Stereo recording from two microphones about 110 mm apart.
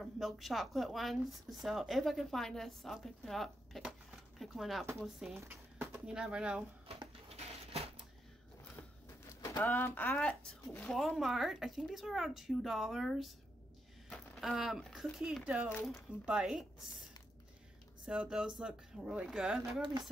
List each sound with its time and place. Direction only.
0.0 s speech: centre (ahead or behind)
5.3 s speech: 20° right (ahead or behind)
6.0 s speech: 10° right (ahead or behind)
7.2 s a sound: 70° right (ahead or behind)
9.6 s speech: 20° left (ahead or behind)
10.9 s speech: centre (ahead or behind)
18.0 s speech: 10° right (ahead or behind)
19.8 s speech: 45° right (ahead or behind)